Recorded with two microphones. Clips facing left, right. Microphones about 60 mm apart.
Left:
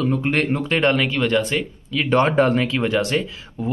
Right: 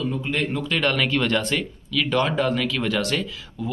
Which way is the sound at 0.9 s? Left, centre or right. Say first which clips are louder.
Left 3 dB; centre.